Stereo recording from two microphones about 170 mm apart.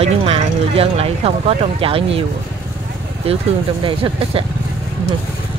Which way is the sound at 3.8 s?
30° right (ahead or behind).